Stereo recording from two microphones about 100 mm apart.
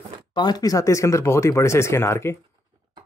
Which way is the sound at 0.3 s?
45° left (ahead or behind).